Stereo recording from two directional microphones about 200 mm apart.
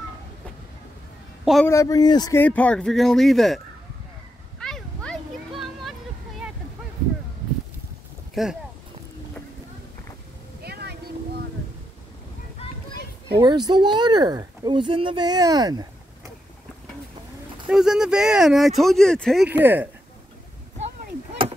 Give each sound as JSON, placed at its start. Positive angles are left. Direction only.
{"t": 1.4, "sound": "a woman's voice", "side_deg": 0}
{"t": 1.7, "sound": "speech", "side_deg": 15}
{"t": 4.6, "sound": "a sound", "side_deg": 5}
{"t": 8.4, "sound": "speech", "side_deg": 0}
{"t": 10.6, "sound": "vehicle", "side_deg": -55}
{"t": 13.4, "sound": "speech", "side_deg": -20}
{"t": 17.6, "sound": "speech", "side_deg": -5}
{"t": 19.5, "sound": "speech", "side_deg": -10}